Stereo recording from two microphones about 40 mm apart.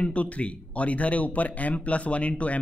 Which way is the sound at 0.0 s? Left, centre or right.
Left.